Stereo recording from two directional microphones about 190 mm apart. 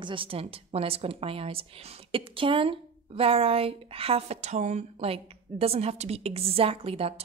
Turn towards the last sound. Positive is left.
turn(degrees=-30)  # may be behind; listen again after turning